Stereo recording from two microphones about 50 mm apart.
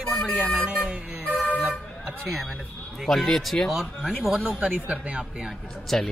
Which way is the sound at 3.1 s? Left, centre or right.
Centre.